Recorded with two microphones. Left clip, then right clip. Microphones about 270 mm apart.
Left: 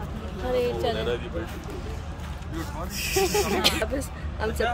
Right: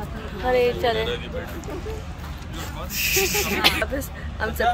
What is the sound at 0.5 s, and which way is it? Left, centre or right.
Speech, centre.